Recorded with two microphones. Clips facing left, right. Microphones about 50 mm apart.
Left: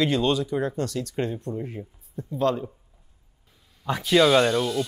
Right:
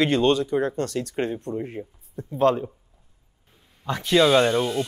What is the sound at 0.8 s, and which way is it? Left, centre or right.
Speech, right.